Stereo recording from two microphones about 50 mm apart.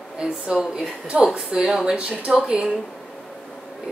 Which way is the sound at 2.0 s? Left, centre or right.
Right.